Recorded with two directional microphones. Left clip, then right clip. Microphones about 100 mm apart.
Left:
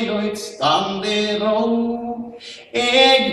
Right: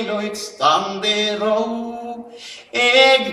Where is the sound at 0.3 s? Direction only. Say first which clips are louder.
Right 3 dB; 15° left (ahead or behind).